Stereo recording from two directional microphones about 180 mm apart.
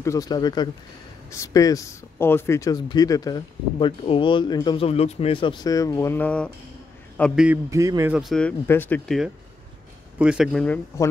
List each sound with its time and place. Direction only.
0.0 s a man's voice: 20° left (ahead or behind)
7.4 s a man's voice: 15° right (ahead or behind)
8.1 s speech: centre (ahead or behind)